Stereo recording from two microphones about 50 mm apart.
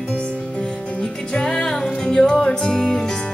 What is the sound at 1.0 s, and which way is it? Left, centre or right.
Music, centre.